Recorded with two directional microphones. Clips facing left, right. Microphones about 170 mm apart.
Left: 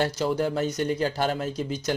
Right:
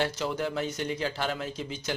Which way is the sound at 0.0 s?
40° left (ahead or behind).